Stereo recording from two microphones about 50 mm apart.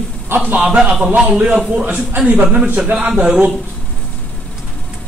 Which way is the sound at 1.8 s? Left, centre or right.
Right.